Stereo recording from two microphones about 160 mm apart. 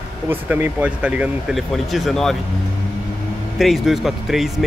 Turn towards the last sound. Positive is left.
turn(degrees=0)  # may be behind; listen again after turning